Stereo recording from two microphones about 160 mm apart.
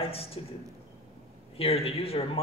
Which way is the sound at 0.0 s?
35° left (ahead or behind).